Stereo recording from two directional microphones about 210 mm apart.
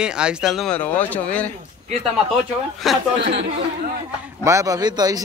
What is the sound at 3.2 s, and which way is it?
Speech, 55° right (ahead or behind).